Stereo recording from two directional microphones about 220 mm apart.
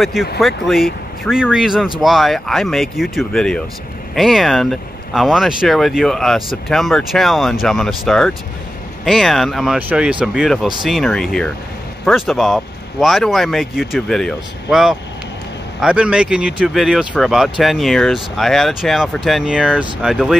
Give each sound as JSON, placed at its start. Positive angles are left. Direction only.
{"t": 0.0, "sound": "speech", "side_deg": 0}